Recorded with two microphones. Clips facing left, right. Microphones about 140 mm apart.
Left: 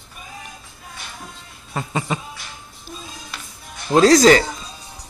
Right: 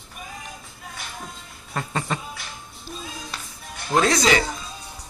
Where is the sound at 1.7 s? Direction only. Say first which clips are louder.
Left 3 dB; 10° left (ahead or behind).